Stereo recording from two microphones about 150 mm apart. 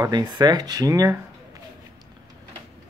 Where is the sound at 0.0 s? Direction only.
30° right (ahead or behind).